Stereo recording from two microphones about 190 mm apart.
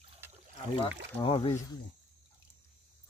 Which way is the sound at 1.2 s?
30° left (ahead or behind).